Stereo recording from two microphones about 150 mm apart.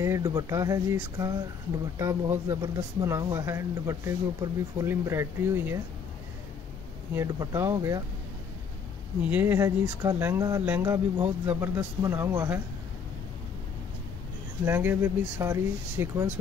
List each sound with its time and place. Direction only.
0.0 s speech: 20° right (ahead or behind)
7.2 s speech: 20° right (ahead or behind)
9.2 s speech: 10° right (ahead or behind)
14.6 s speech: 15° right (ahead or behind)